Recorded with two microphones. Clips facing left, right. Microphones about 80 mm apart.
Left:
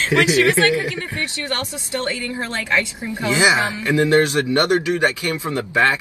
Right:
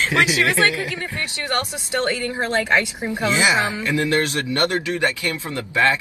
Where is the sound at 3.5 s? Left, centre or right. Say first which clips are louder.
Even; right.